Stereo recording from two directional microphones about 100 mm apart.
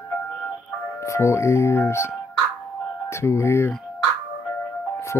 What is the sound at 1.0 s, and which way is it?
Speech, 30° left (ahead or behind).